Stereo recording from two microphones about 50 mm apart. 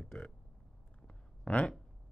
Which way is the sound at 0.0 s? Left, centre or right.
Centre.